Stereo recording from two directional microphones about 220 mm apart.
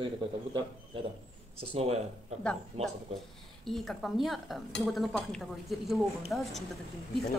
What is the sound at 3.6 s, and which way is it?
A woman's voice, centre (ahead or behind).